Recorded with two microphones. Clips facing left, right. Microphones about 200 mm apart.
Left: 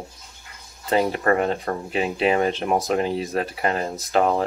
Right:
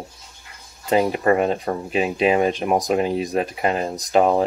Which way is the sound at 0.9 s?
15° right (ahead or behind).